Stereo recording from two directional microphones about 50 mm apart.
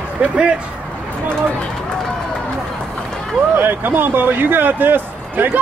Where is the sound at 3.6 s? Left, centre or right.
Right.